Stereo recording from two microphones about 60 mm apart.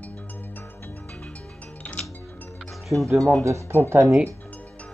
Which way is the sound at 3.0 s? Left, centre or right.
Right.